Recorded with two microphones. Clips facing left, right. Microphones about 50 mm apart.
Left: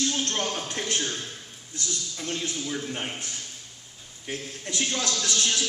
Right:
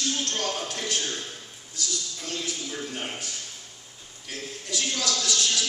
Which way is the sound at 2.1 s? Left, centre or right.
Left.